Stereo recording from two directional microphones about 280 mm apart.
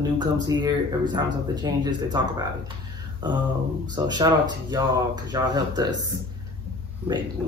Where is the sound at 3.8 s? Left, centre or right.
Centre.